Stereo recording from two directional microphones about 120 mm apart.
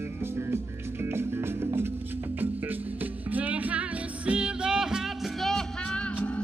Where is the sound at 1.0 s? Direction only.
20° right (ahead or behind).